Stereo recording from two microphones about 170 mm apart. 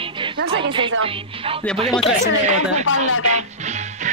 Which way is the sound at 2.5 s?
45° right (ahead or behind).